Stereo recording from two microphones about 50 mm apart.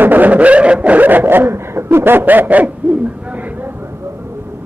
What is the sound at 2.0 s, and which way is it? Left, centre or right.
Snicker, right.